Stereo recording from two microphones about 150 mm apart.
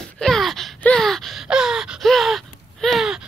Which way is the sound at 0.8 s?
5° left (ahead or behind).